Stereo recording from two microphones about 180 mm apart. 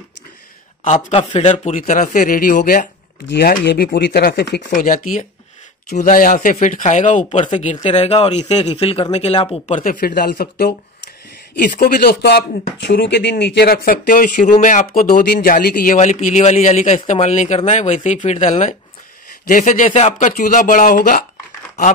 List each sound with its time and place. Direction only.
0.8 s speech: 30° left (ahead or behind); by 2.9 s 50° left (ahead or behind)
3.3 s speech: 65° left (ahead or behind)
4.6 s a man's voice: 45° left (ahead or behind); by 9.8 s 30° left (ahead or behind)
9.8 s speech: 50° left (ahead or behind)